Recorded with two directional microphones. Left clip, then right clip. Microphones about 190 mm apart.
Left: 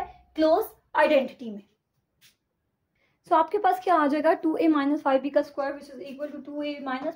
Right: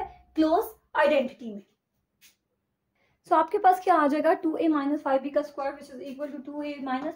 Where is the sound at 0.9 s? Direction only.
50° left (ahead or behind).